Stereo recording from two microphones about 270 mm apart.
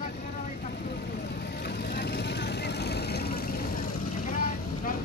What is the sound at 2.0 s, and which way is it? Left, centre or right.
Vehicle, left.